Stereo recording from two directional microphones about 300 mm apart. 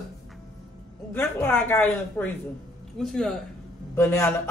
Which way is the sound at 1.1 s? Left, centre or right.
Centre.